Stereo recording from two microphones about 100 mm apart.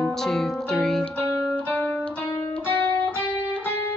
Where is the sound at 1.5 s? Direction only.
15° left (ahead or behind).